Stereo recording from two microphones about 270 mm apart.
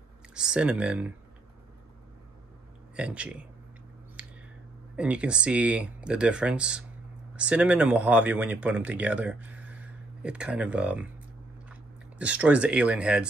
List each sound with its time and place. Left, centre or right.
0.3 s speech: centre
3.0 s speech: centre
4.2 s a sound: centre
4.9 s speech: centre